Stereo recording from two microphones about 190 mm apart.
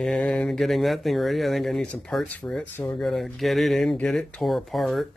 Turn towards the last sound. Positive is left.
turn(degrees=0)  # may be behind; listen again after turning